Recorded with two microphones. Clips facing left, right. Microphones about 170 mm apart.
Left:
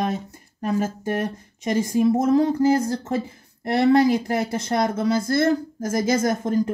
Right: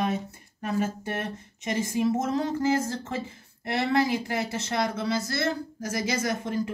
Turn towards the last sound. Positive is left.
turn(degrees=45)  # may be behind; listen again after turning